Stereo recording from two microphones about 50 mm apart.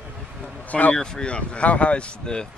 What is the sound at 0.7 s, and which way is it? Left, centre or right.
Speech, left.